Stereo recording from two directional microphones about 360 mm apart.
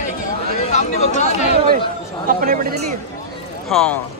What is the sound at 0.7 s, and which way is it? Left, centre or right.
Chatter, centre.